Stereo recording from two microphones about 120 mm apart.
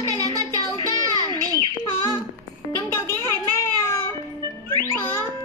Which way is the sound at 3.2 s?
20° left (ahead or behind).